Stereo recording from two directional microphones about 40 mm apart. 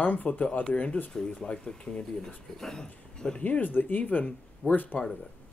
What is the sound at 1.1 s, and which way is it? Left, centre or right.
Speech, left.